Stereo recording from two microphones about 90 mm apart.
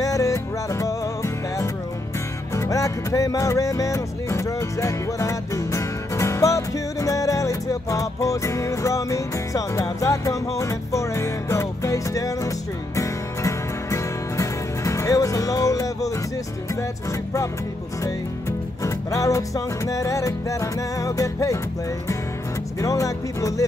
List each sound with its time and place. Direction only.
0.0 s music: 40° left (ahead or behind)
18.9 s music: 35° left (ahead or behind)
22.8 s music: 35° left (ahead or behind)